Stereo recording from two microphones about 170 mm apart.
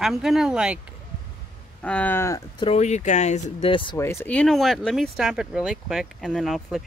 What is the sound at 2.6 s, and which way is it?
Speech, 35° left (ahead or behind).